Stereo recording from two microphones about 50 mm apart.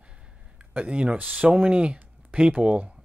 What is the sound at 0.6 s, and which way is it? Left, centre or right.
Speech, right.